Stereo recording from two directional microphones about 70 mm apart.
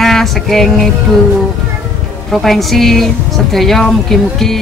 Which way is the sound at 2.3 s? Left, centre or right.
Centre.